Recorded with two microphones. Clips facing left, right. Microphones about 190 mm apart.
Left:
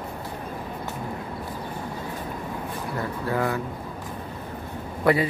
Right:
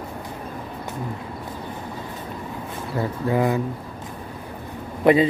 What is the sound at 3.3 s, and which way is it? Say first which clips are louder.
Speech: right 5 dB; 15° right (ahead or behind).